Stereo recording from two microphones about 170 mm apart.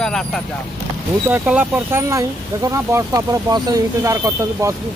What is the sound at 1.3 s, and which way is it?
Speech, 10° right (ahead or behind).